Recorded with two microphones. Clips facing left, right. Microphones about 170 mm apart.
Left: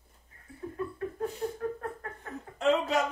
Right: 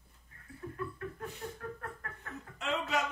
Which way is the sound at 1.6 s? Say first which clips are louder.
Left 9 dB; 25° left (ahead or behind).